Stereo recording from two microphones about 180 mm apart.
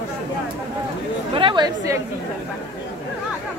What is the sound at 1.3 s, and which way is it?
Speech, 25° right (ahead or behind).